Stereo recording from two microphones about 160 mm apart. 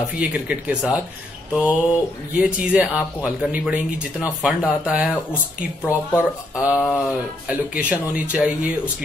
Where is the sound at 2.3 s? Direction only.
5° right (ahead or behind).